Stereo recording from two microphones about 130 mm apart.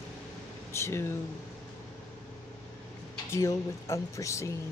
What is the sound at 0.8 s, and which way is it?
Speech, 20° left (ahead or behind).